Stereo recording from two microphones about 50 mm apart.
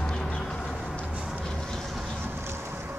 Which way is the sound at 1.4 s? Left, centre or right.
Centre.